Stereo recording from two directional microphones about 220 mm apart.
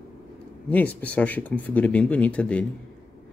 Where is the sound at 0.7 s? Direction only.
5° left (ahead or behind).